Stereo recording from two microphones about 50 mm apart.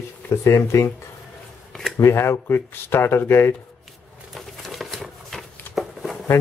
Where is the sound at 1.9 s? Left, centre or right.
Left.